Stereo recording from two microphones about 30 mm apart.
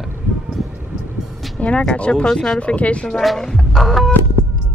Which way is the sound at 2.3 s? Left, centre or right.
Left.